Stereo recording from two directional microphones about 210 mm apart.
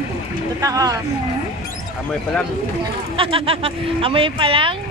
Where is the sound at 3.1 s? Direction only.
25° right (ahead or behind).